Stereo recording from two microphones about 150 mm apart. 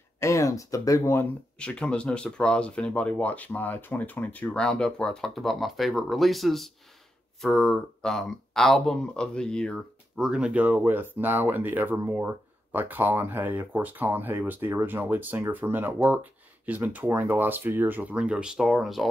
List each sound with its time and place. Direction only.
0.2 s speech: 20° left (ahead or behind)
1.6 s speech: 5° left (ahead or behind)